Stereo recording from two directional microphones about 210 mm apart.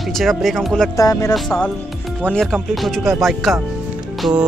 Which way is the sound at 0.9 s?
15° left (ahead or behind).